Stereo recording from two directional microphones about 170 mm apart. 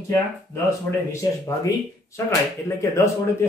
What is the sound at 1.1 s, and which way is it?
Speech, 20° left (ahead or behind).